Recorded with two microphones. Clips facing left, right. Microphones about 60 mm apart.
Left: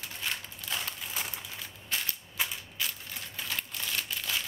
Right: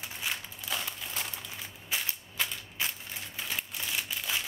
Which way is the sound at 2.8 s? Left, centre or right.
Right.